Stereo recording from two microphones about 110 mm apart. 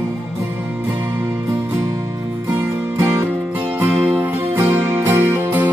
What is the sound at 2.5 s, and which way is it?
Music, 25° right (ahead or behind).